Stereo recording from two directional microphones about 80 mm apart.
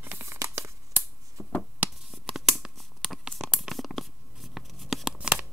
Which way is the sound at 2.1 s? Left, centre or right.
Centre.